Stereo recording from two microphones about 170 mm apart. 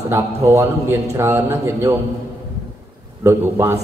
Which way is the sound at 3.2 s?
15° right (ahead or behind).